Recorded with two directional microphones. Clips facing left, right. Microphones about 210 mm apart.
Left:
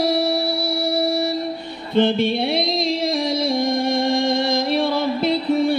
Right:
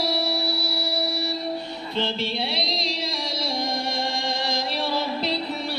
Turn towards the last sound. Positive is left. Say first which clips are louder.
# left 10 dB
turn(degrees=50)  # may be behind; listen again after turning